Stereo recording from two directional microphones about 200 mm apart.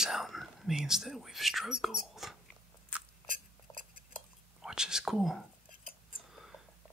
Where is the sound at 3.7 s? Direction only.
15° left (ahead or behind).